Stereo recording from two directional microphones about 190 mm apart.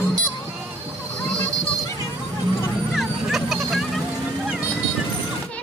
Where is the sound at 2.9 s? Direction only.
Centre (ahead or behind).